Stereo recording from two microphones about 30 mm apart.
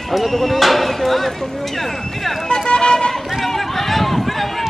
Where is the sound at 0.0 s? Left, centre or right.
Centre.